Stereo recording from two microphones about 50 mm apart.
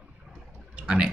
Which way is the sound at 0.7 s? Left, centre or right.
Centre.